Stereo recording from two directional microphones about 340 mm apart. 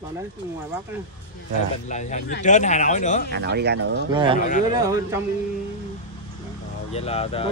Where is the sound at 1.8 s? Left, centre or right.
Left.